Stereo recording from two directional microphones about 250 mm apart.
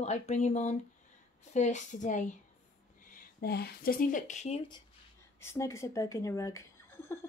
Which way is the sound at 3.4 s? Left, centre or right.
Left.